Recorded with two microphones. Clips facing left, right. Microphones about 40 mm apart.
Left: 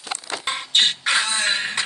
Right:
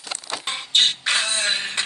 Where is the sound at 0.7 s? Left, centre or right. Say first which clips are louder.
Even; left.